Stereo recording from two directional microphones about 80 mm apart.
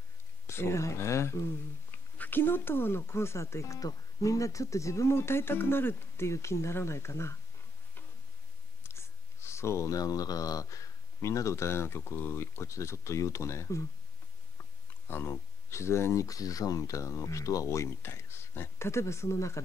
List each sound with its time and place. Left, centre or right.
0.5 s speech: left
1.9 s speech: left
8.8 s speech: left
15.0 s speech: left